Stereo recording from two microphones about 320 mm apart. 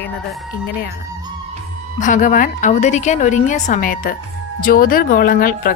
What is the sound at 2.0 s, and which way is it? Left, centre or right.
A woman's voice, left.